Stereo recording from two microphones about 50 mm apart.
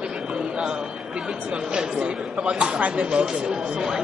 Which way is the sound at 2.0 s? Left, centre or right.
Right.